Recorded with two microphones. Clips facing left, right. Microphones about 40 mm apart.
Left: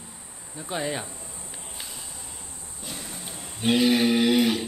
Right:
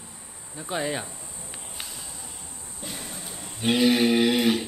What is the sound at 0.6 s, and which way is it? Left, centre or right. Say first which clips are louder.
Speech: right 1 dB; centre.